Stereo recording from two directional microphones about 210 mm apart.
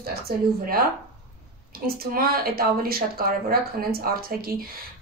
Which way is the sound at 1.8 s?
45° right (ahead or behind).